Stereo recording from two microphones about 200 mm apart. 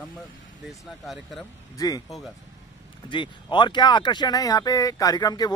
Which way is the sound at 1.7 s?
20° left (ahead or behind).